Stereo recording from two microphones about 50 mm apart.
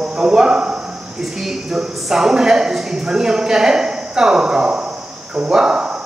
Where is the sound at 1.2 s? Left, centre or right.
Centre.